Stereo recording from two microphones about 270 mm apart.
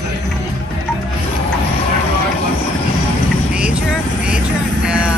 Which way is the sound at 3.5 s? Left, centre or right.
Centre.